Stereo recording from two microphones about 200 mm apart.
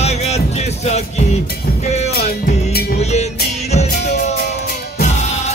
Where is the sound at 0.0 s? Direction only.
35° left (ahead or behind).